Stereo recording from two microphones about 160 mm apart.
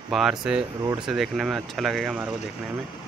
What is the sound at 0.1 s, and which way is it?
Speech, centre (ahead or behind).